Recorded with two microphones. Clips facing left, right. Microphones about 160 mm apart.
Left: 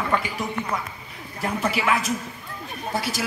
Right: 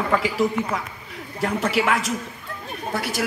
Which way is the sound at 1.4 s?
70° right (ahead or behind).